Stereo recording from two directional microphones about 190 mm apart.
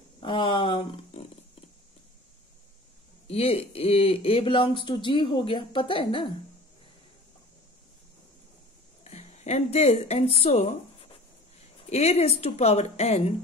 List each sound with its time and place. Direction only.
0.2 s a sound: 25° left (ahead or behind)
3.3 s speech: 30° left (ahead or behind)
9.0 s speech: 35° left (ahead or behind)